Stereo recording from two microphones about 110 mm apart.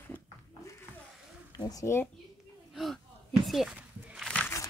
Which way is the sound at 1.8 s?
20° left (ahead or behind).